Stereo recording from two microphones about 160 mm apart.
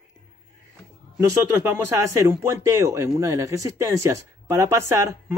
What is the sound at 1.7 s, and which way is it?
Speech, 15° right (ahead or behind).